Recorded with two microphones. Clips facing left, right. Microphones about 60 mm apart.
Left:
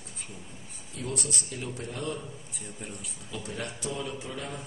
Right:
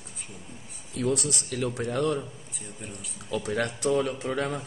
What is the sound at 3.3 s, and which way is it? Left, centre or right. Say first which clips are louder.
Speech: right 9 dB; right.